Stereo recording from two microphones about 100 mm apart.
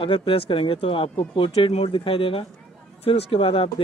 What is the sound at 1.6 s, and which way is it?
Speech, 90° left.